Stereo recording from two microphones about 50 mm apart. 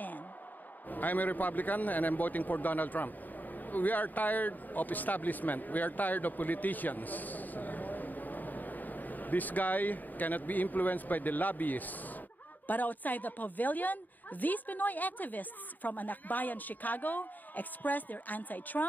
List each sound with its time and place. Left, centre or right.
0.8 s a man's voice: left